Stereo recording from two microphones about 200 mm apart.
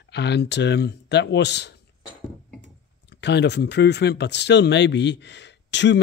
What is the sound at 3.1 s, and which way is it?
Speech, 60° left (ahead or behind).